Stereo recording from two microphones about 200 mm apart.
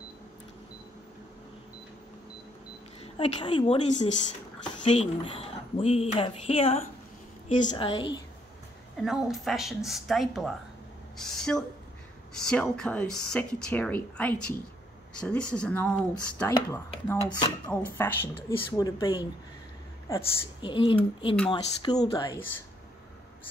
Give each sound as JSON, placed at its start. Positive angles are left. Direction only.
{"t": 3.0, "sound": "a woman's voice", "side_deg": 25}
{"t": 9.0, "sound": "speech", "side_deg": 0}